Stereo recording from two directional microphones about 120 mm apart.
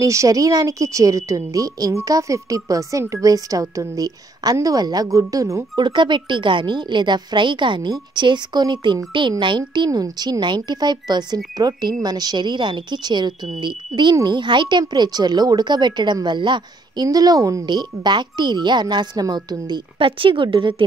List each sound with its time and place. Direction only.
0.0 s a woman's voice: 25° right (ahead or behind)
5.8 s speech: 40° right (ahead or behind)